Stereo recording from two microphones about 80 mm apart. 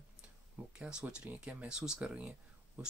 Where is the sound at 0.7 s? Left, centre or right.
Centre.